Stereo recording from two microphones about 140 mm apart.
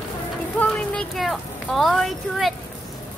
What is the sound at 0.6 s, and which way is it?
Speech, 10° left (ahead or behind).